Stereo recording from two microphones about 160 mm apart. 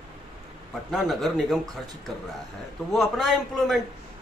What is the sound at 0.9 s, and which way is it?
Speech, centre (ahead or behind).